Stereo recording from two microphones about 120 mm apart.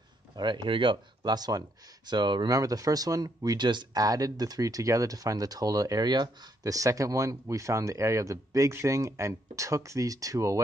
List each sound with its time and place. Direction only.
0.4 s speech: 40° right (ahead or behind)